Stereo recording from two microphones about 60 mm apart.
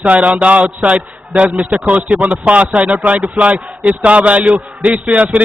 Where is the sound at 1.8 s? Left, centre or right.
Right.